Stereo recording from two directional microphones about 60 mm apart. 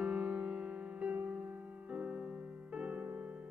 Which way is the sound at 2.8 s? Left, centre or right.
Right.